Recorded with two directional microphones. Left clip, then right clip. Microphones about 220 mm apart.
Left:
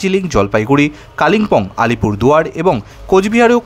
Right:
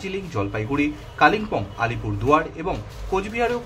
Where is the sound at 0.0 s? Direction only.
50° left (ahead or behind).